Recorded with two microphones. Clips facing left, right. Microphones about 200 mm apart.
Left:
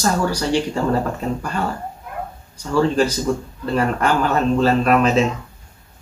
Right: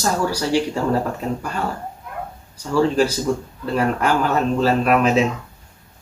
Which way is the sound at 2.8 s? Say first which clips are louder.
Even; 10° right (ahead or behind).